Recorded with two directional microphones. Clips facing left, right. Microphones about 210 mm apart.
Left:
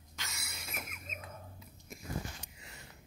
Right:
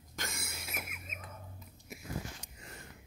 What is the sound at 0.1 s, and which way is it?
Cough, 50° right (ahead or behind).